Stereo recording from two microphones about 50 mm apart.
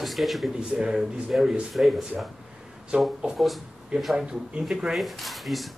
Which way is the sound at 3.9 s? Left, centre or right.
Centre.